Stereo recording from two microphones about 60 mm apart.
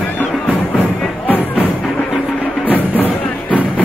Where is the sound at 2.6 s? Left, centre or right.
Left.